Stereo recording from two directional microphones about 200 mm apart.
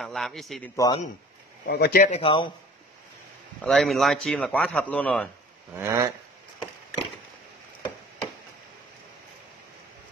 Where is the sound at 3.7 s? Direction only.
Centre (ahead or behind).